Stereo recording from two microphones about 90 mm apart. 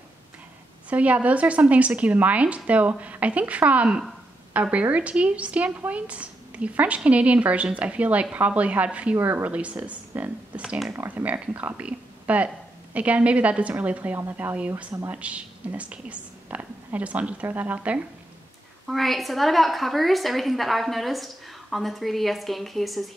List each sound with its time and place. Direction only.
0.8 s a woman's voice: 15° right (ahead or behind)
18.9 s a woman's voice: centre (ahead or behind)